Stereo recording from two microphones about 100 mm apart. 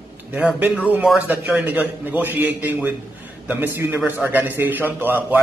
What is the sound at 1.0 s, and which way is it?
A man's voice, 15° right (ahead or behind).